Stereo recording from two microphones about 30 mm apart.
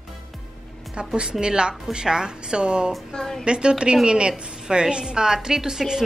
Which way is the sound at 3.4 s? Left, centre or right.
Right.